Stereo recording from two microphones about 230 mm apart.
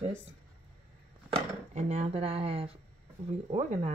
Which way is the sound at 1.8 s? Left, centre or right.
Right.